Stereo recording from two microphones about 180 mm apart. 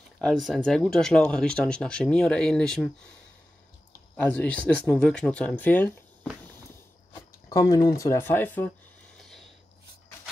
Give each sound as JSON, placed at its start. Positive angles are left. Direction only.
{"t": 0.2, "sound": "speech", "side_deg": 0}
{"t": 4.2, "sound": "speech", "side_deg": 5}
{"t": 7.4, "sound": "speech", "side_deg": 20}